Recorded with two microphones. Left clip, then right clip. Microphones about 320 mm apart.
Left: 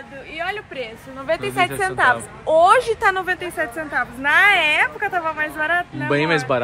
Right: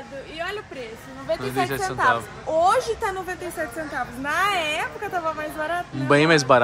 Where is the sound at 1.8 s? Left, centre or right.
Left.